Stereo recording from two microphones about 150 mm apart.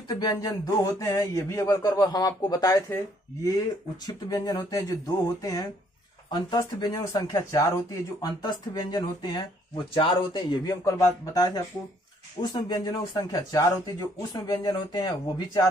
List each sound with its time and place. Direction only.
0.1 s a man's voice: 25° left (ahead or behind)
10.7 s speech: 20° left (ahead or behind)